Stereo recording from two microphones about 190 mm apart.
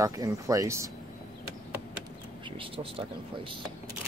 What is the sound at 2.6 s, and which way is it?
Speech, 30° right (ahead or behind).